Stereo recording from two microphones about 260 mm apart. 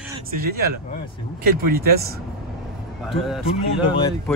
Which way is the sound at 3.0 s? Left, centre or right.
Centre.